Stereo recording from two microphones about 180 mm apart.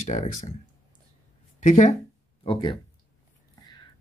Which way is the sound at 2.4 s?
30° left (ahead or behind).